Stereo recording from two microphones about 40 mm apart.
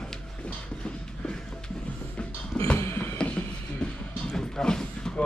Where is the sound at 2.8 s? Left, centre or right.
Left.